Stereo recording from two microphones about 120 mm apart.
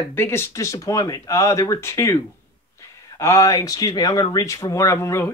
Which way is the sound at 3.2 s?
25° left (ahead or behind).